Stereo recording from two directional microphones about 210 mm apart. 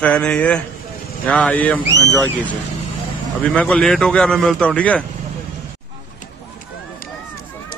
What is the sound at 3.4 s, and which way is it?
A man's voice, 5° left (ahead or behind).